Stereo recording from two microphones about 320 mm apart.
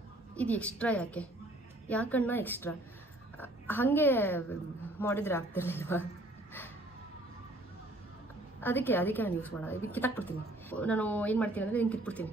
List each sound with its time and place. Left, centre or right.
0.4 s a woman's voice: centre
8.5 s a woman's voice: centre